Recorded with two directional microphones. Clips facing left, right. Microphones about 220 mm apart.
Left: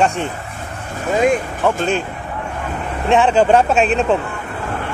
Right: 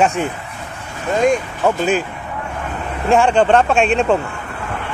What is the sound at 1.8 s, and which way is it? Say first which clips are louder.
Speech: right 2 dB; 5° right (ahead or behind).